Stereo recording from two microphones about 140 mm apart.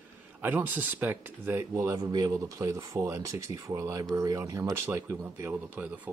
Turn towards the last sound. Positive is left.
turn(degrees=-10)  # may be behind; listen again after turning